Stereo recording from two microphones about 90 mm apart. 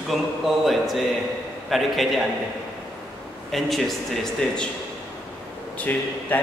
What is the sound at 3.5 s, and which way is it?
A man's voice, centre (ahead or behind).